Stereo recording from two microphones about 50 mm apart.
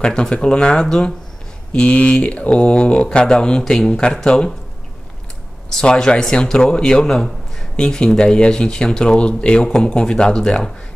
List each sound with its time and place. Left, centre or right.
0.0 s speech: centre
1.7 s mantra: left
4.2 s speech: centre
5.7 s speech: centre